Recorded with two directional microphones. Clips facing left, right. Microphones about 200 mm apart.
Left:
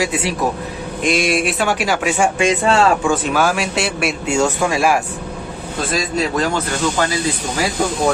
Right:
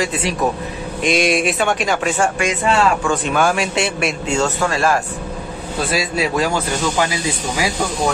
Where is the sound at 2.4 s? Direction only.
30° left (ahead or behind).